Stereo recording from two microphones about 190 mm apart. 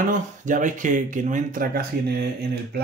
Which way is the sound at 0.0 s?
40° right (ahead or behind).